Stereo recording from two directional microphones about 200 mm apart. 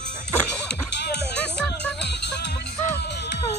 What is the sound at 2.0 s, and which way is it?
Music, 60° left (ahead or behind).